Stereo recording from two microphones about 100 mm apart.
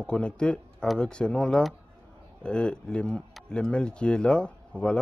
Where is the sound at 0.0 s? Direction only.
10° left (ahead or behind).